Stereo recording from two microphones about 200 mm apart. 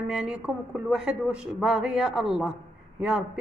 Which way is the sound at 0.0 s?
5° right (ahead or behind).